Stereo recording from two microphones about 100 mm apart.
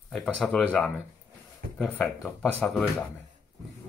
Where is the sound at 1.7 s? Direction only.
10° left (ahead or behind).